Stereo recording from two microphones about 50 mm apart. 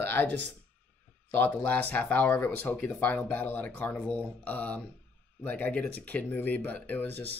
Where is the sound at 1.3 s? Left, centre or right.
Left.